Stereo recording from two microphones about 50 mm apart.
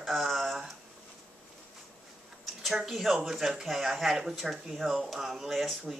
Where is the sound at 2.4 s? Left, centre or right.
Centre.